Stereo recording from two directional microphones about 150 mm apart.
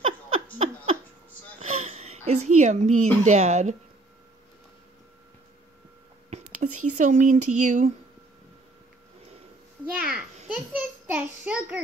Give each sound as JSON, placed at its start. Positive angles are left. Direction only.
{"t": 1.6, "sound": "speech", "side_deg": -45}
{"t": 6.3, "sound": "speech", "side_deg": -50}
{"t": 9.9, "sound": "a child's voice", "side_deg": -5}